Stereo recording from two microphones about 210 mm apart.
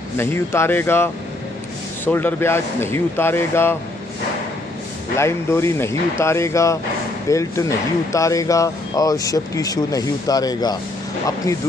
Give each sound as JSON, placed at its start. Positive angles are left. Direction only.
{"t": 0.2, "sound": "speech", "side_deg": 10}
{"t": 5.1, "sound": "speech", "side_deg": 15}